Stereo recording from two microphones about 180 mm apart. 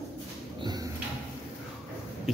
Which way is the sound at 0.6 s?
20° right (ahead or behind).